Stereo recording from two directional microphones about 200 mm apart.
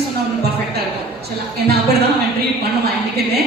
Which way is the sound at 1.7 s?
50° right (ahead or behind).